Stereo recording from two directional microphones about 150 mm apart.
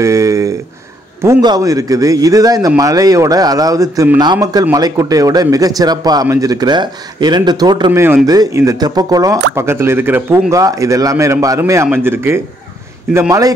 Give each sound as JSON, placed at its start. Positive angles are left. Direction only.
{"t": 0.0, "sound": "a sound", "side_deg": -20}
{"t": 1.4, "sound": "speech", "side_deg": -25}
{"t": 7.9, "sound": "speech", "side_deg": -15}